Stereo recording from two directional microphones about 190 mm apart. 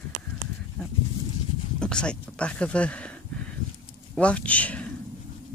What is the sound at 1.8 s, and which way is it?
Speech, 5° left (ahead or behind).